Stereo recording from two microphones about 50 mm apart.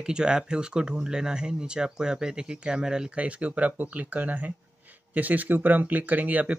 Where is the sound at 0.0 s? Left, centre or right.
Centre.